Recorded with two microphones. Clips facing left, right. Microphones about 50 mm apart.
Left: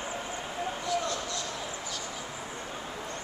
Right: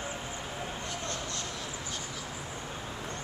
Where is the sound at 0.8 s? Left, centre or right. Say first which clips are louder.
Left 7 dB; right.